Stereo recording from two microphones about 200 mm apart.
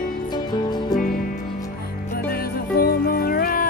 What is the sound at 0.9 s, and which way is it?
Music, 45° left (ahead or behind).